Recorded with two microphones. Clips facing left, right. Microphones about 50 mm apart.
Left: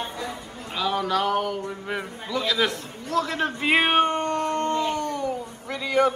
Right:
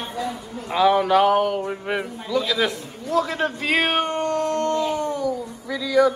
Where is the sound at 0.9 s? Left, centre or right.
Centre.